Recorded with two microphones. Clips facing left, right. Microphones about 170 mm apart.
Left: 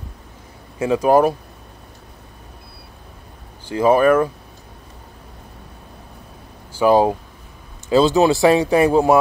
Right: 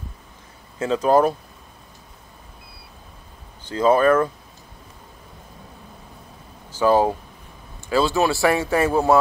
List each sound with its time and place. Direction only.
0.7 s speech: 15° left (ahead or behind)
3.6 s speech: 10° left (ahead or behind)
6.8 s speech: 15° left (ahead or behind)